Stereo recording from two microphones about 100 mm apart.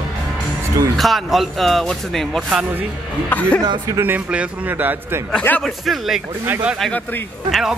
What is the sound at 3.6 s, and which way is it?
Speech, 45° right (ahead or behind).